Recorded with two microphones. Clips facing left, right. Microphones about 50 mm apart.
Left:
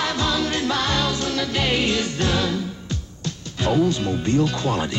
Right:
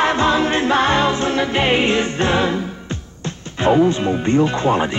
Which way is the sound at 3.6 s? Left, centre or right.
Right.